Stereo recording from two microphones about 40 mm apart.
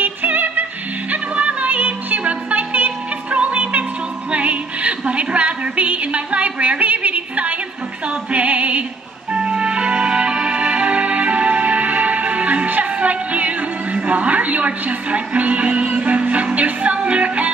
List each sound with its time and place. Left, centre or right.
0.0 s music: right
1.1 s music: right
1.7 s music: right
3.3 s music: right
3.5 s music: right
4.3 s a sound: right
8.1 s music: right
9.3 s music: right